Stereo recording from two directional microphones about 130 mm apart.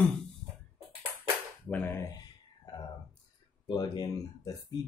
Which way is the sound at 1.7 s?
15° left (ahead or behind).